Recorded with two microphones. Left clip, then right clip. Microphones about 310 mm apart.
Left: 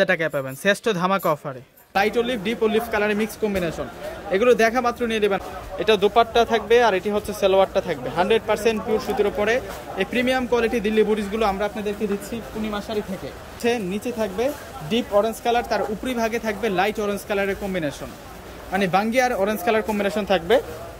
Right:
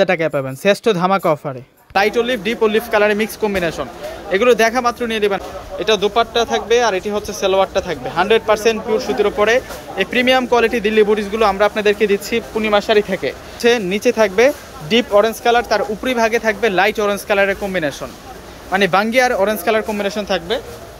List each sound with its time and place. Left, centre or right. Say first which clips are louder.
0.0 s speech: right 5 dB; centre
2.0 s a man's voice: right 6 dB; centre
14.1 s speech: right 10 dB; right
14.4 s a man's voice: right 11 dB; centre